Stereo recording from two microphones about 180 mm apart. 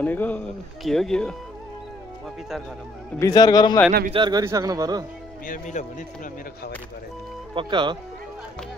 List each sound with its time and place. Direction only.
0.0 s speech: 10° left (ahead or behind)
3.2 s speech: 20° left (ahead or behind)
4.1 s speech: 25° right (ahead or behind)
5.5 s speech: 45° left (ahead or behind)
7.5 s speech: 25° right (ahead or behind)